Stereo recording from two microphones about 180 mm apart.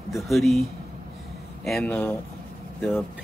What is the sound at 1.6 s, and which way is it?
Speech, 5° left (ahead or behind).